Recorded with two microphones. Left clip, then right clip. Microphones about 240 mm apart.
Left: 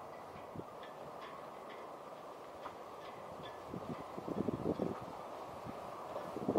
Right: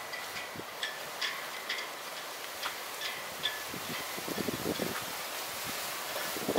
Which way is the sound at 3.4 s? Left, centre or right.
Centre.